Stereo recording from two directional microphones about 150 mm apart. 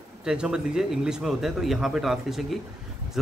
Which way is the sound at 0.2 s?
5° right (ahead or behind).